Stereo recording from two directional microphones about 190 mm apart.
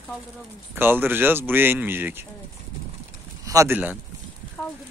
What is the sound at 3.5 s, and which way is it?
Speech, 15° right (ahead or behind).